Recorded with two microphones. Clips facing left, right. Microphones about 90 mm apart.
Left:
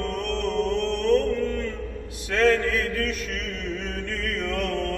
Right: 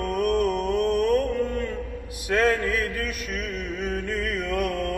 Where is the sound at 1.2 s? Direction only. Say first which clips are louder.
Even; 75° left (ahead or behind).